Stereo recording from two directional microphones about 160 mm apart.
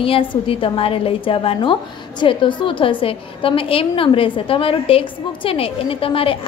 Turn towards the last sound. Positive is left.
turn(degrees=35)  # may be behind; listen again after turning